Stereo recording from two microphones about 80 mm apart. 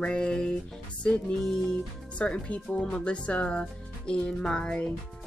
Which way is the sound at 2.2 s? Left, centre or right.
Centre.